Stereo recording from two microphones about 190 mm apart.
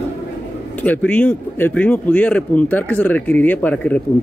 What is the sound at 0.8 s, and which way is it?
Speech, 5° left (ahead or behind).